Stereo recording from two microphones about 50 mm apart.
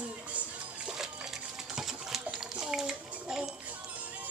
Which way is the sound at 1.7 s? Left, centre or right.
Centre.